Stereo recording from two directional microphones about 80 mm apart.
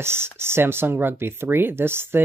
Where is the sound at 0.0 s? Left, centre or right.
Right.